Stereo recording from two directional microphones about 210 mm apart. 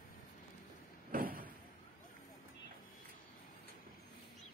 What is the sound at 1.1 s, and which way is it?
Vehicle, 40° right (ahead or behind).